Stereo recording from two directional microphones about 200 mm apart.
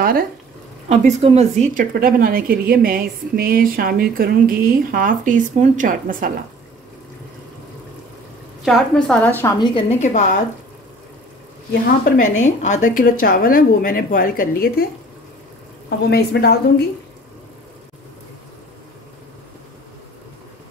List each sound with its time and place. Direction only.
0.8 s speech: 35° right (ahead or behind)
8.6 s a woman's voice: centre (ahead or behind)
9.6 s a woman's voice: 30° left (ahead or behind)
12.4 s speech: 35° left (ahead or behind)
16.1 s a woman's voice: 55° left (ahead or behind)